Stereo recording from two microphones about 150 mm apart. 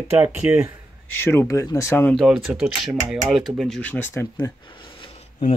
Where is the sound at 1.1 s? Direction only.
15° left (ahead or behind).